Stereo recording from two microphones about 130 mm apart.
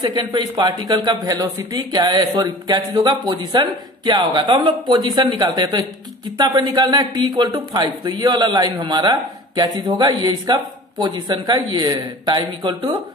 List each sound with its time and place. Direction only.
0.0 s speech: 35° right (ahead or behind)